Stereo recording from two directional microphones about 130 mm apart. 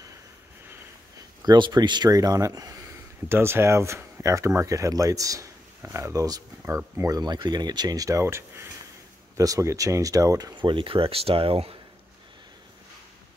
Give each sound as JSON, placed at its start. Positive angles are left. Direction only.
{"t": 1.4, "sound": "speech", "side_deg": -35}